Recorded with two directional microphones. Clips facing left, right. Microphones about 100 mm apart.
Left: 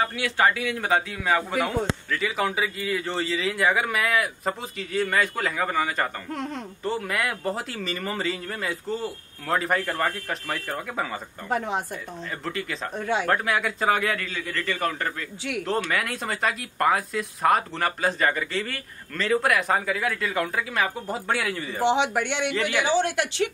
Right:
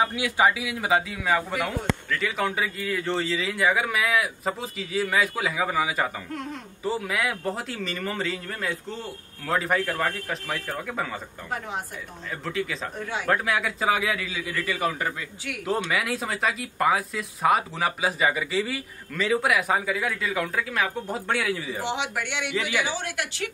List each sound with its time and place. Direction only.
0.0 s speech: 15° right (ahead or behind); by 11.1 s centre (ahead or behind)
12.4 s speech: centre (ahead or behind)
21.8 s speech: 30° left (ahead or behind)
22.5 s speech: 5° right (ahead or behind)
22.8 s speech: 25° left (ahead or behind)